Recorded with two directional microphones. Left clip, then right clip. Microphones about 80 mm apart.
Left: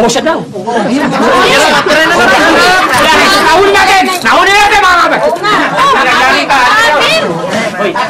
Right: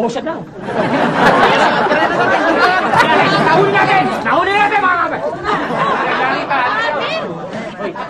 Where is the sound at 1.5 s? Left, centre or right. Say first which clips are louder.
Left 5 dB; left.